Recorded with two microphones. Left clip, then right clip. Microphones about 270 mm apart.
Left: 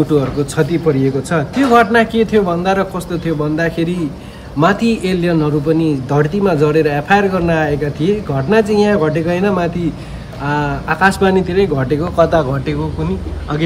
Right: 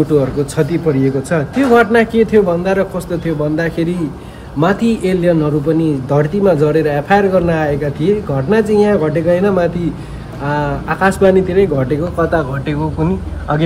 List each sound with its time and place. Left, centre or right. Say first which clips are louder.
0.1 s speech: right 1 dB; centre
12.2 s speech: left 4 dB; left
12.6 s speech: right 2 dB; centre